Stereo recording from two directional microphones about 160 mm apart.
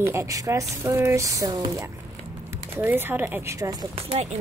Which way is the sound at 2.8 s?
15° right (ahead or behind).